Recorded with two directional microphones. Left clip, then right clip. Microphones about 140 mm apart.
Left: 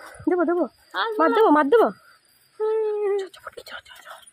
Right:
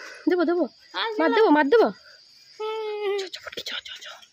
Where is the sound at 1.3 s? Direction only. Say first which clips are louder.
Even; 10° right (ahead or behind).